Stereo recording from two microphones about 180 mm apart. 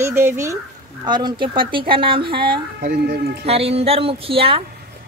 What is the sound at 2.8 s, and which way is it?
Speech, 55° right (ahead or behind).